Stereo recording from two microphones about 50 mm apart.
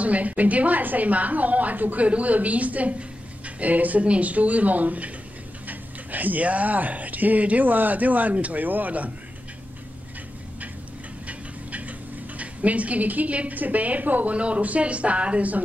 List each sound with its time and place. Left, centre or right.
0.0 s a woman's voice: right
12.4 s a woman's voice: right